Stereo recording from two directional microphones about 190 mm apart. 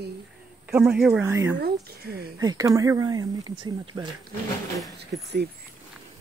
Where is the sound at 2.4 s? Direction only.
20° right (ahead or behind).